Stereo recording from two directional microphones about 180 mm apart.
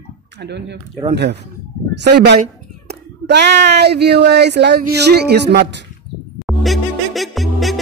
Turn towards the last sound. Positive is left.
turn(degrees=0)  # may be behind; listen again after turning